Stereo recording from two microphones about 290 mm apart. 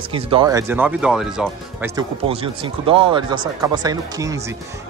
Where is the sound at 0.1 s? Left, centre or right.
Centre.